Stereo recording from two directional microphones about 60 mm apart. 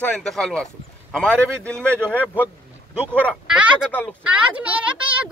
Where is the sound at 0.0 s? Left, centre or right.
Centre.